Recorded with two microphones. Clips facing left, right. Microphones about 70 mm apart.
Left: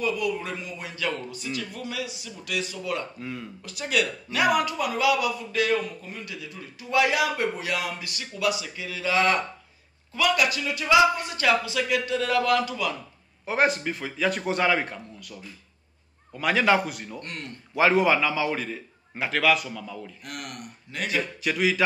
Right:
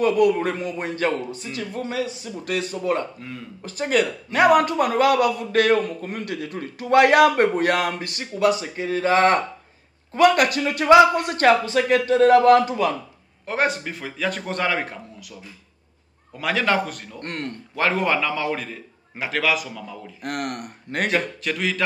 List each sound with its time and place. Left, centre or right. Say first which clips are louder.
0.0 s a man's voice: right 9 dB; right
3.2 s a man's voice: left 1 dB; centre
3.6 s a man's voice: right 6 dB; right
13.5 s a man's voice: even; centre
16.3 s a man's voice: even; centre
17.2 s a man's voice: right 7 dB; right
17.7 s a man's voice: left 1 dB; centre
20.2 s a man's voice: right 10 dB; right
21.4 s a man's voice: left 1 dB; centre